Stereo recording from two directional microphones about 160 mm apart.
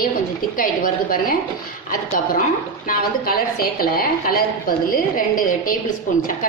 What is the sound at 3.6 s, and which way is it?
A woman's voice, 65° left (ahead or behind).